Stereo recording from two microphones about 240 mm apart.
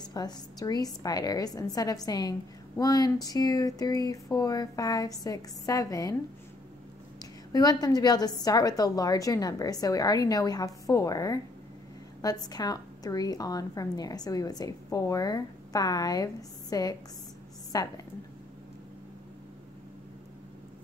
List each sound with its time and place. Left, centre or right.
0.1 s a woman's voice: centre
7.5 s a woman's voice: centre